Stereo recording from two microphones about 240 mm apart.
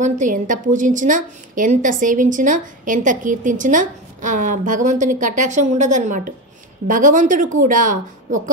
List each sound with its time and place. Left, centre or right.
0.0 s a woman's voice: right